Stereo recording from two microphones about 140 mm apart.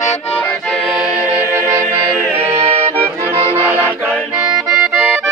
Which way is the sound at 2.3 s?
45° right (ahead or behind).